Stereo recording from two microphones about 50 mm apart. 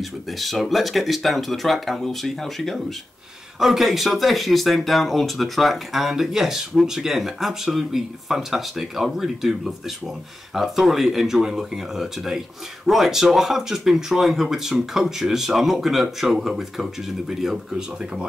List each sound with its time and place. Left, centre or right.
0.4 s speech: centre